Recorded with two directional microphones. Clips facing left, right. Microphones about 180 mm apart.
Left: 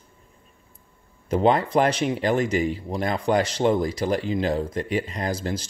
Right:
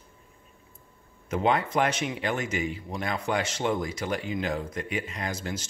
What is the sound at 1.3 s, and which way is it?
Speech, 35° left (ahead or behind).